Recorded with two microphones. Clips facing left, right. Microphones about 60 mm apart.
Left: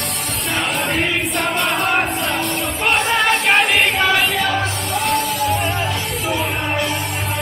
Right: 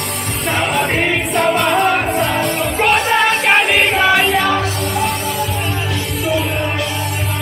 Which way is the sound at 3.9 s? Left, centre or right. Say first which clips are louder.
Right 4 dB; centre.